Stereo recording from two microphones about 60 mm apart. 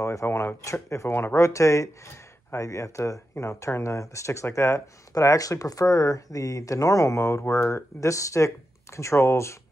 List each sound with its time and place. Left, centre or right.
0.0 s speech: left
1.4 s speech: left
5.1 s speech: left